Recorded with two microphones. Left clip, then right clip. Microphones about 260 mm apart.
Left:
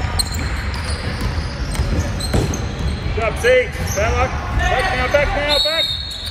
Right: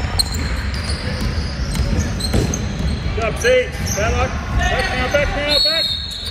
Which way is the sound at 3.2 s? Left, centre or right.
Left.